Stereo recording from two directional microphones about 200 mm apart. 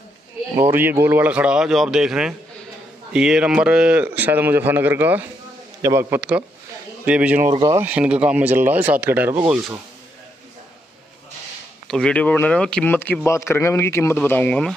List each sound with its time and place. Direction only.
0.6 s speech: 10° right (ahead or behind)
7.5 s speech: 25° right (ahead or behind)
7.8 s speech: 5° right (ahead or behind)
11.9 s speech: 5° left (ahead or behind)